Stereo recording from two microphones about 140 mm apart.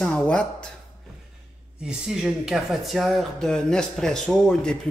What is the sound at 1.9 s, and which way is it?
Speech, 5° right (ahead or behind).